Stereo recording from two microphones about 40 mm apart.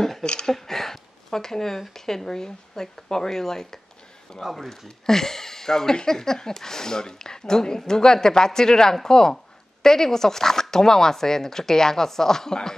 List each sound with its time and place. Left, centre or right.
0.2 s speech: left
0.5 s speech: centre